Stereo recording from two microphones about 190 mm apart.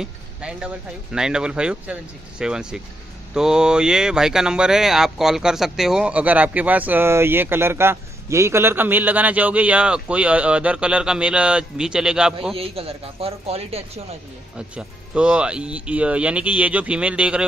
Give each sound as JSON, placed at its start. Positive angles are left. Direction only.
{"t": 0.0, "sound": "a sound", "side_deg": -5}
{"t": 1.1, "sound": "speech", "side_deg": -5}
{"t": 12.5, "sound": "speech", "side_deg": -30}
{"t": 14.8, "sound": "speech", "side_deg": -5}